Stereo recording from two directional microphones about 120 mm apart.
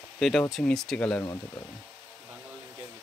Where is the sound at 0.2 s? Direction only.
Centre (ahead or behind).